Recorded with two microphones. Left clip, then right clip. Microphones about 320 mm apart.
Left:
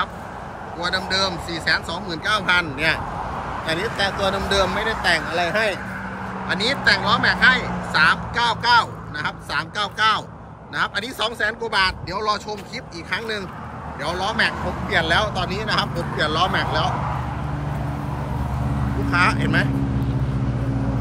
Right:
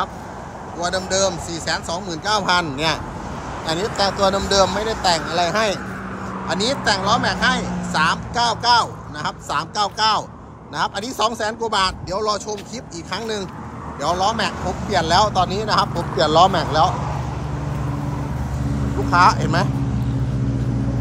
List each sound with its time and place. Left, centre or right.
0.7 s speech: centre
19.0 s speech: centre